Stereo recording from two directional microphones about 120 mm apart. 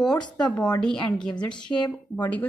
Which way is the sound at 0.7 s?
5° left (ahead or behind).